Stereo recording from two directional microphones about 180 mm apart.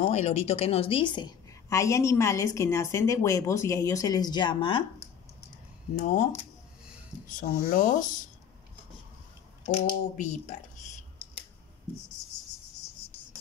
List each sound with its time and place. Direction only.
0.0 s a woman's voice: 35° left (ahead or behind)
5.9 s speech: 45° left (ahead or behind)
7.2 s speech: 50° left (ahead or behind)
9.6 s speech: 40° left (ahead or behind)